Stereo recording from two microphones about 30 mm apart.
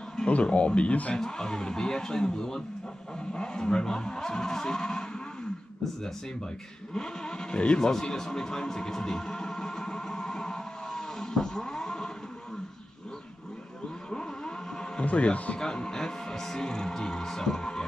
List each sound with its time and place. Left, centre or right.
0.3 s speech: left
1.1 s speech: left
6.9 s speech: left
8.1 s a sound: centre
14.1 s vehicle: left
15.0 s speech: left
15.6 s speech: left